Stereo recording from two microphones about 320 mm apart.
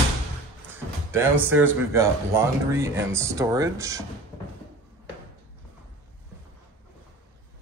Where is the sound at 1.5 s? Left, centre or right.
Centre.